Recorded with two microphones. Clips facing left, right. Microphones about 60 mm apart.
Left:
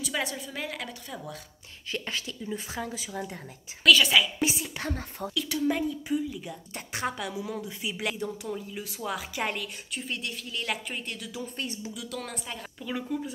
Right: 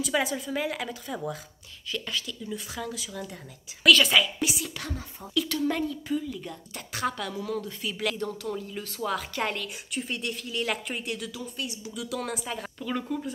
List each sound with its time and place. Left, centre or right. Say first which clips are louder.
0.0 s a woman's voice: right 5 dB; centre
1.9 s speech: right 1 dB; left
3.8 s a woman's voice: right 1 dB; centre
4.4 s a sound: left 1 dB; left
5.2 s speech: left 8 dB; left
5.6 s a woman's voice: even; centre
6.7 s a woman's voice: right 2 dB; left; by 11.3 s centre
11.5 s speech: even; left
11.9 s a woman's voice: right 4 dB; centre